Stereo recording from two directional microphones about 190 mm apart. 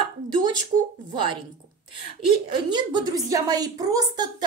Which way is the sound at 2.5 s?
25° right (ahead or behind).